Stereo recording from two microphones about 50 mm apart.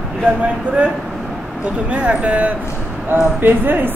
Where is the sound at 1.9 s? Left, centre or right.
Right.